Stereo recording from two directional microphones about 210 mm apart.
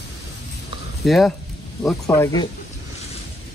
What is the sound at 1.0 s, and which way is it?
Speech, centre (ahead or behind).